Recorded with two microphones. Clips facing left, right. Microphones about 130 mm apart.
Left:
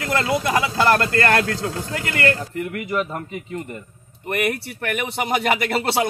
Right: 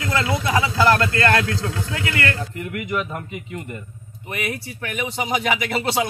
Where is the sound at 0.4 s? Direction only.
45° left (ahead or behind).